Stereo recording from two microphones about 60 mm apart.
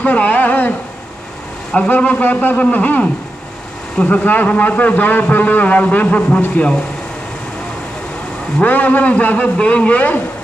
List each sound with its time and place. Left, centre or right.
0.0 s a sound: left
2.0 s a man's voice: left
8.6 s a man's voice: left